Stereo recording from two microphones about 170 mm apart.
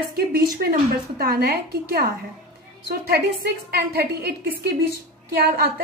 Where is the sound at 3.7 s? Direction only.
70° right (ahead or behind).